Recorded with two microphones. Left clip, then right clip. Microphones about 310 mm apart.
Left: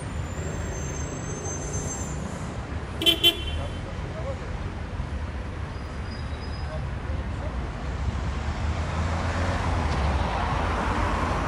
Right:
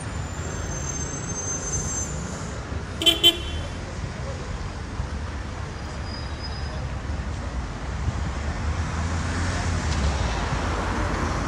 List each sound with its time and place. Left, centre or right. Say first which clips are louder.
3.0 s vehicle: right 2 dB; right